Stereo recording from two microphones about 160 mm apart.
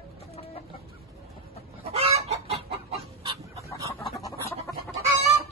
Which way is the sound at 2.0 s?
40° right (ahead or behind).